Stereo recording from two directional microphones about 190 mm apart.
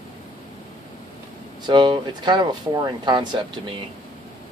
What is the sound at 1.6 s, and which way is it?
Speech, 25° right (ahead or behind).